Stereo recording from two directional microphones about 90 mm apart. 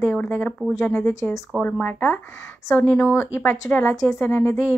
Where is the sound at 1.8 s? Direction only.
20° left (ahead or behind).